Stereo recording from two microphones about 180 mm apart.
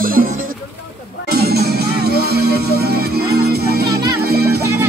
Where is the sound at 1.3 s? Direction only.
60° right (ahead or behind).